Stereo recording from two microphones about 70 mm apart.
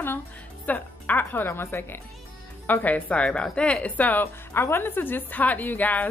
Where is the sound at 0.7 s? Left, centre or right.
Left.